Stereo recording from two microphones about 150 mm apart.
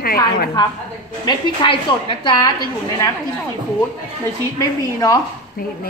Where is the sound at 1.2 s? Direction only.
35° left (ahead or behind).